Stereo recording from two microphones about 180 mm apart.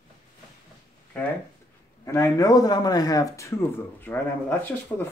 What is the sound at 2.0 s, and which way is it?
Speech, 15° left (ahead or behind).